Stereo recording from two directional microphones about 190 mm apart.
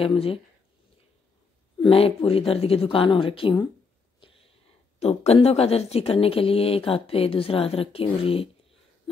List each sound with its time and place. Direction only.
0.0 s speech: 30° left (ahead or behind)
1.8 s speech: 30° left (ahead or behind)
4.2 s a sound: 30° left (ahead or behind)
5.0 s speech: 35° left (ahead or behind)